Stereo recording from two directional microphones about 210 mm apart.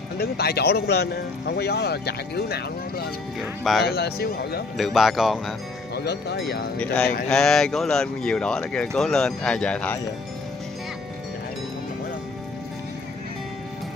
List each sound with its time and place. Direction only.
0.2 s speech: 50° left (ahead or behind)
3.3 s speech: centre (ahead or behind)
3.8 s speech: 50° left (ahead or behind)
4.7 s speech: centre (ahead or behind)
5.9 s speech: 50° left (ahead or behind)
6.8 s speech: 5° left (ahead or behind)